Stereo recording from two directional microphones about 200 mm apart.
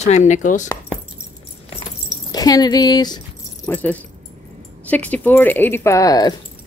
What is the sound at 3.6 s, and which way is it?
Speech, 10° left (ahead or behind).